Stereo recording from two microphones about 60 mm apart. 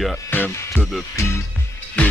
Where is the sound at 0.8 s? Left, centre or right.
Centre.